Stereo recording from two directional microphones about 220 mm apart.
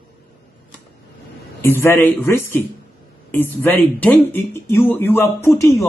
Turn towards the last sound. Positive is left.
turn(degrees=10)  # may be behind; listen again after turning